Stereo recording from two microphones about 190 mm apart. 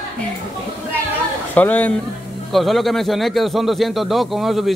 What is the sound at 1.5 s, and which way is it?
A man's voice, 10° left (ahead or behind).